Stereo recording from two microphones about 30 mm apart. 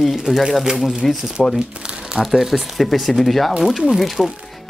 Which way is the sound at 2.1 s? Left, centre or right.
Centre.